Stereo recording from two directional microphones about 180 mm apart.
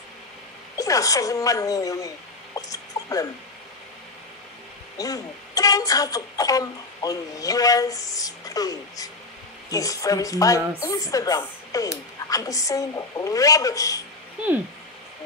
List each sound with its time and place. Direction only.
0.7 s a woman's voice: 20° left (ahead or behind)
4.9 s speech: 20° left (ahead or behind)